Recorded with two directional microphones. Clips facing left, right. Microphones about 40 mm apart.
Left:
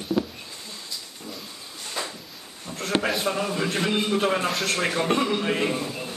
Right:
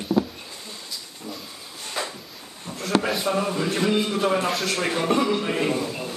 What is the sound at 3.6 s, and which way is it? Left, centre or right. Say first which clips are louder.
Speech: even; centre.